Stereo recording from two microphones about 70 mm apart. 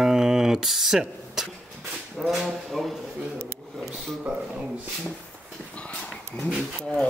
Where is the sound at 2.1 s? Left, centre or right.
Centre.